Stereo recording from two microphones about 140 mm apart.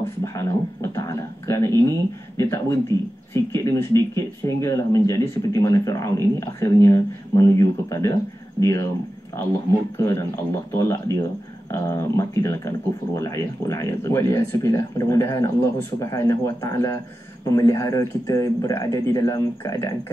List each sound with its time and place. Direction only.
0.0 s speech: 20° left (ahead or behind)
9.9 s speech: 20° left (ahead or behind)